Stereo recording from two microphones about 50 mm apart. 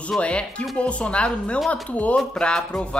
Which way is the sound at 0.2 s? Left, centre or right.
Left.